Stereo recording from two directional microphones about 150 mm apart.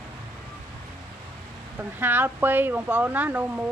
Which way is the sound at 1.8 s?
15° right (ahead or behind).